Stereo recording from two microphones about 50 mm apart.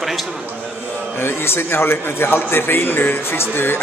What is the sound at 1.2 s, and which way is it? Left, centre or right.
A man's voice, left.